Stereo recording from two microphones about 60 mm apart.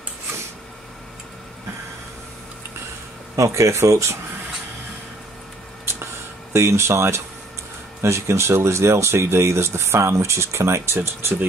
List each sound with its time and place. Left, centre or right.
3.3 s speech: right
6.5 s speech: right